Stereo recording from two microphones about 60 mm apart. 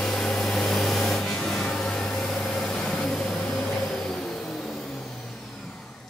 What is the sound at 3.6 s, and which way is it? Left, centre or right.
Vehicle, centre.